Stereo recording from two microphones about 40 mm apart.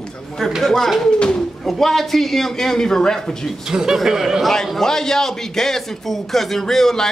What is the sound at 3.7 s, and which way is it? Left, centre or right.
Speech, centre.